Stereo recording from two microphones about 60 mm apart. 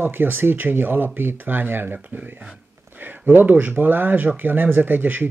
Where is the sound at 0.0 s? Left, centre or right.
Right.